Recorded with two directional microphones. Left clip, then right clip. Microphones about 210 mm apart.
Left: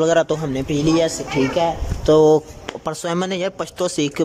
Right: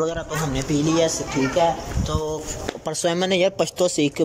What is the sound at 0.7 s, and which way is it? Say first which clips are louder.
Speech: left 2 dB; 5° left (ahead or behind).